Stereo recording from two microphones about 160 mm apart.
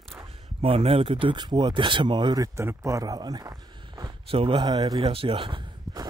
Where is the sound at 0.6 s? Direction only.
35° right (ahead or behind).